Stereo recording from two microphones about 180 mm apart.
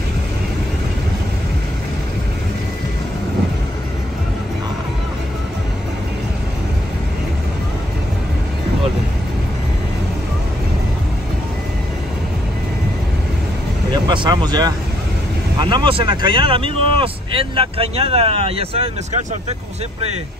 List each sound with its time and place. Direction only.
13.9 s vehicle: 25° right (ahead or behind)
15.6 s speech: 30° right (ahead or behind)